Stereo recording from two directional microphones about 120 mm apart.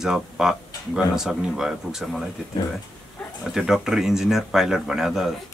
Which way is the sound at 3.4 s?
5° right (ahead or behind).